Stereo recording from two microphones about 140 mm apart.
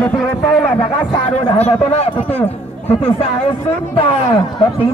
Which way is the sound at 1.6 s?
50° left (ahead or behind).